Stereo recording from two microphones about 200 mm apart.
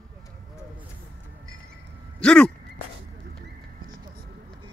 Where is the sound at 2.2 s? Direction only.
5° left (ahead or behind).